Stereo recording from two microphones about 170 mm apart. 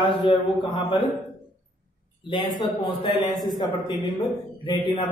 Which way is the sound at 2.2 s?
30° left (ahead or behind).